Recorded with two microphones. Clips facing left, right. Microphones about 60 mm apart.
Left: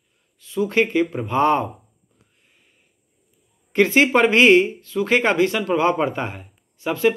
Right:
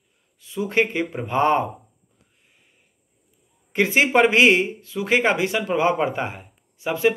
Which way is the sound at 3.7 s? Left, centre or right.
Centre.